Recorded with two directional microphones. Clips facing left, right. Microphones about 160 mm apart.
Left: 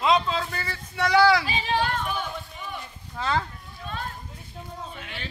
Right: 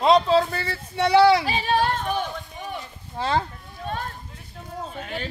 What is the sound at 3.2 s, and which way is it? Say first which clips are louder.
Speech: right 3 dB; 30° right (ahead or behind).